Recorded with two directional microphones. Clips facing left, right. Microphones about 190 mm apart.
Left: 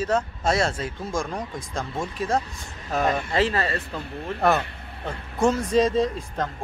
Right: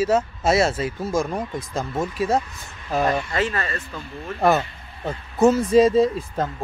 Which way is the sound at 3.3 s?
30° left (ahead or behind).